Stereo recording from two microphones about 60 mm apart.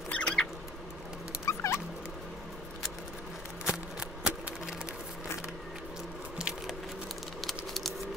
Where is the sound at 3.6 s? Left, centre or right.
Centre.